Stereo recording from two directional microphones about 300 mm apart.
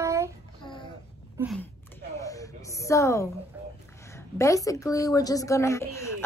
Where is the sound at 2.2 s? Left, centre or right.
Centre.